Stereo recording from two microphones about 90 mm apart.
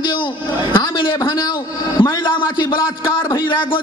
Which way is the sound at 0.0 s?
60° left (ahead or behind).